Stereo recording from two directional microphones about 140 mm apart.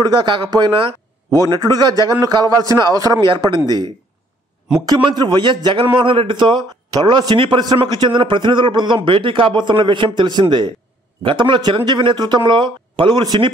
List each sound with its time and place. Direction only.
0.0 s a man's voice: 35° right (ahead or behind)